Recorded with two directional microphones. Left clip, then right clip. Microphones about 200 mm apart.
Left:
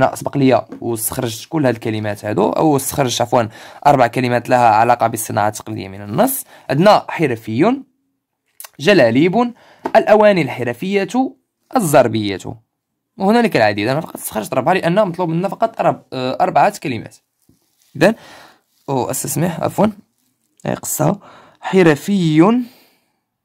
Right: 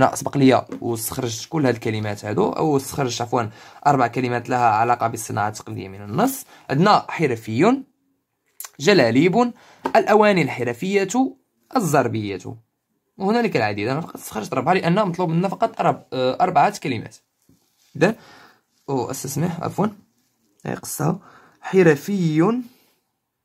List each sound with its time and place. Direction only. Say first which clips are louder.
0.0 s speech: left 2 dB; 10° left (ahead or behind)
0.8 s speech: left 4 dB; 25° left (ahead or behind)
17.9 s speech: left 6 dB; 40° left (ahead or behind)